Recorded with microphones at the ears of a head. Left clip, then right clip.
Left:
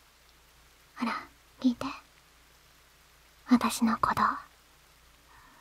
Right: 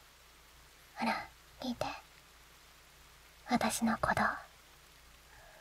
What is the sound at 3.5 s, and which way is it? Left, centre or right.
Speech, left.